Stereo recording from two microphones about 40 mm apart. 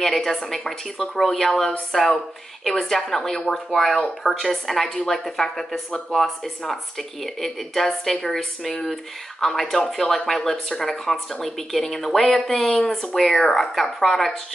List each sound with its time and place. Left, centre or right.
0.0 s a woman's voice: centre
13.7 s speech: centre